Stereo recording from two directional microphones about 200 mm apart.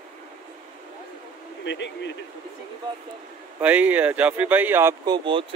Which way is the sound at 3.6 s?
5° right (ahead or behind).